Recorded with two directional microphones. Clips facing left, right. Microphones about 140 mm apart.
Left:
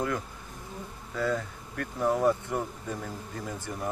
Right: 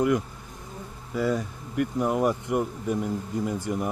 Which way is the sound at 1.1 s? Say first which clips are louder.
Right 4 dB; 15° right (ahead or behind).